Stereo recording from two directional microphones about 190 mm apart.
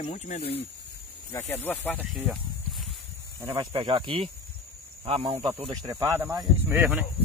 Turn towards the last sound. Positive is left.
turn(degrees=-10)  # may be behind; listen again after turning